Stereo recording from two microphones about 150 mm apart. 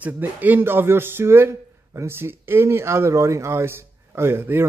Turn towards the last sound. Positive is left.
turn(degrees=-15)  # may be behind; listen again after turning